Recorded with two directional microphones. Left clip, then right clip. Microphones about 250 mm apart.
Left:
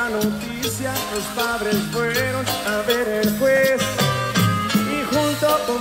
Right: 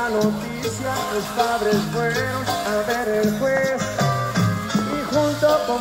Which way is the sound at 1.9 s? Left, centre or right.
Left.